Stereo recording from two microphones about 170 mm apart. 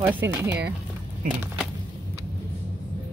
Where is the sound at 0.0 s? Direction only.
10° right (ahead or behind).